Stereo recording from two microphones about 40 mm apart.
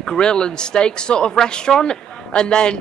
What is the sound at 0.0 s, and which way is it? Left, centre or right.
Speech, centre.